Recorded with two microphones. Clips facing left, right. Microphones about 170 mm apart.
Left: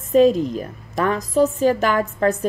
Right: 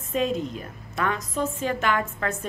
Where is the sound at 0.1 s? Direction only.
40° left (ahead or behind).